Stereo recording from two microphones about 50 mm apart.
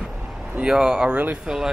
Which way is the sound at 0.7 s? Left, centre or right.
Centre.